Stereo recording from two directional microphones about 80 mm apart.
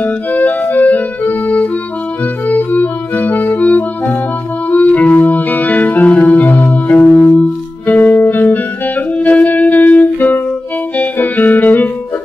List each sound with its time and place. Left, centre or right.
0.0 s organ: centre
2.4 s music: left